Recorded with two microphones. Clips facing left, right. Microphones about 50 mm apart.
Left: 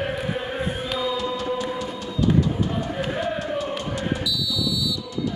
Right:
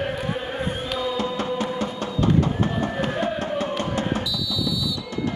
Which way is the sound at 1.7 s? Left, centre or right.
Right.